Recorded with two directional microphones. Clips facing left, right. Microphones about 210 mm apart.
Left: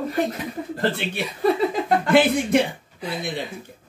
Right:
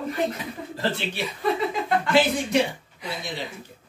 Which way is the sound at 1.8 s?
55° left (ahead or behind).